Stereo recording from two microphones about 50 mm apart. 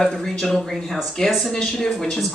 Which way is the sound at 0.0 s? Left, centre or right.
Centre.